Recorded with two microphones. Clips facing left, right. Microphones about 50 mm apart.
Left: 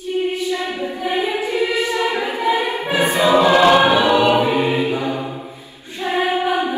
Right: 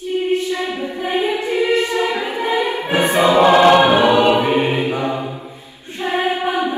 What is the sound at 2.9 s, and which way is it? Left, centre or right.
Music, right.